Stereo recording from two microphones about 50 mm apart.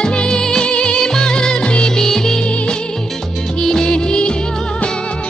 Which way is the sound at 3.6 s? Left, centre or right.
Centre.